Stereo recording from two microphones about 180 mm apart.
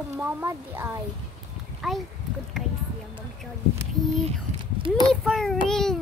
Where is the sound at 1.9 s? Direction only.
Centre (ahead or behind).